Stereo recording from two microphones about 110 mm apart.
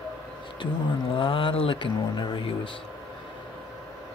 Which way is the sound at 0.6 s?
50° left (ahead or behind).